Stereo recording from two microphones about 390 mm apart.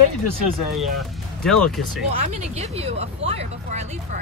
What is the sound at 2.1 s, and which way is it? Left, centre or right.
Speech, centre.